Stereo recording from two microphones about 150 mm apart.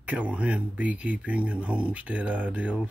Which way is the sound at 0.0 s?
10° right (ahead or behind).